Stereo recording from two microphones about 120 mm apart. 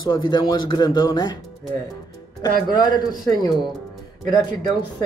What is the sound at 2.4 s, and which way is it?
Speech, 35° left (ahead or behind).